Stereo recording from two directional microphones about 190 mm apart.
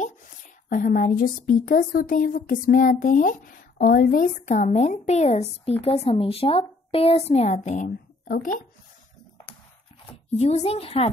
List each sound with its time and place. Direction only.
0.7 s speech: 45° left (ahead or behind)
10.3 s speech: 35° left (ahead or behind)